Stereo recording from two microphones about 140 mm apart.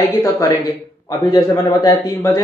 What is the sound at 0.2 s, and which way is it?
A man's voice, 25° left (ahead or behind).